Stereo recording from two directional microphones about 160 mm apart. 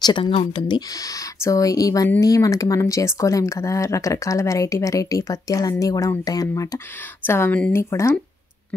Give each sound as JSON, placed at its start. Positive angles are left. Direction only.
{"t": 0.0, "sound": "speech", "side_deg": 30}